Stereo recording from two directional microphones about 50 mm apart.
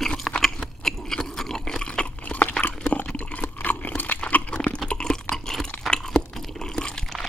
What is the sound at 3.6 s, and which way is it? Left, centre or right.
Crunch, left.